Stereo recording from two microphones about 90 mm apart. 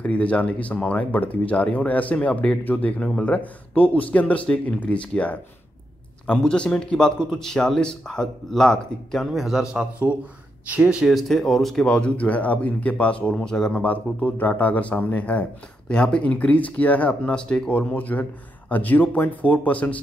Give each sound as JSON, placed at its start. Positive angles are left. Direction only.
{"t": 0.0, "sound": "speech", "side_deg": 15}